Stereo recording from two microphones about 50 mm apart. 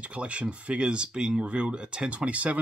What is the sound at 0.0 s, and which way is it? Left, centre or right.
Speech, right.